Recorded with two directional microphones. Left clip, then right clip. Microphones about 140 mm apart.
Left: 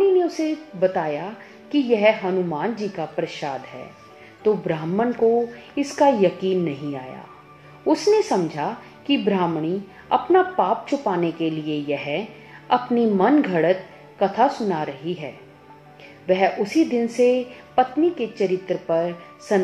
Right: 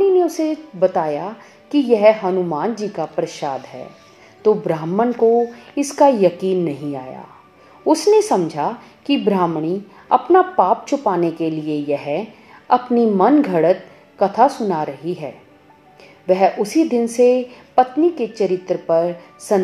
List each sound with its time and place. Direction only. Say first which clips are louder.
0.2 s a woman's voice: right 4 dB; 35° right (ahead or behind)